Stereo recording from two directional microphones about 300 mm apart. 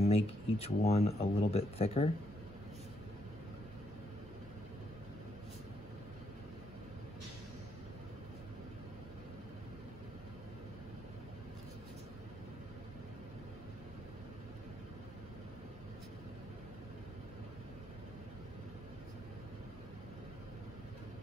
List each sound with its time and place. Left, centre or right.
0.0 s speech: centre